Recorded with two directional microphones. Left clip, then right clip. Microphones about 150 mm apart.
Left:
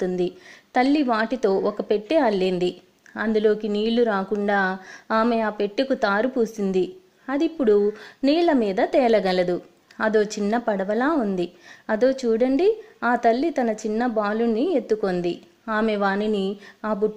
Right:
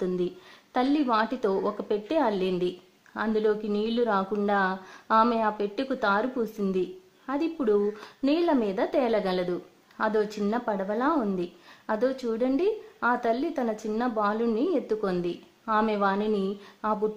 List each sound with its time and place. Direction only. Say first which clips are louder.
0.7 s a woman's voice: left 4 dB; 15° left (ahead or behind)